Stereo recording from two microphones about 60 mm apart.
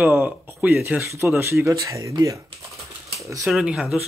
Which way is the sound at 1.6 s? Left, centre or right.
Right.